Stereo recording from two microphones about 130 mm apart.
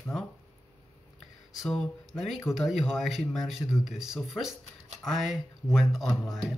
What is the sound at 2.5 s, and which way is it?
Speech, centre (ahead or behind).